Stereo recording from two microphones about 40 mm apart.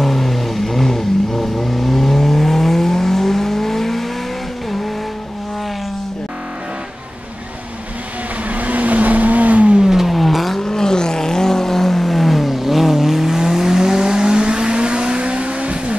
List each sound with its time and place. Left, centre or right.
0.0 s vehicle: centre
8.5 s vehicle: right
9.8 s vehicle: centre
10.0 s vehicle: centre
10.6 s vehicle: centre; by 16.0 s right